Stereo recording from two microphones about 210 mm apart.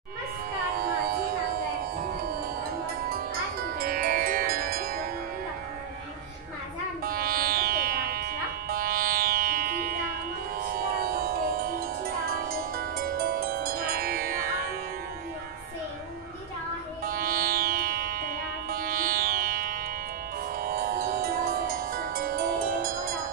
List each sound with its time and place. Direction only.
3.1 s music: 45° right (ahead or behind)
7.1 s music: 45° right (ahead or behind)
17.0 s music: 45° right (ahead or behind)
22.8 s music: 15° right (ahead or behind)